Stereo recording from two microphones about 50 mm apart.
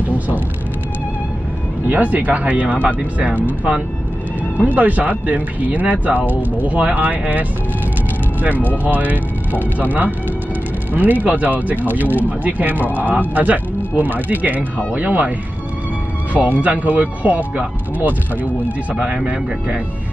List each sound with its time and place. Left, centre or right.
1.9 s speech: right
10.9 s speech: right
16.3 s speech: right
18.9 s speech: centre